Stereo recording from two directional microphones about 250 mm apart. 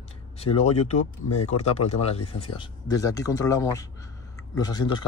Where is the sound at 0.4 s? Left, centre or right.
Left.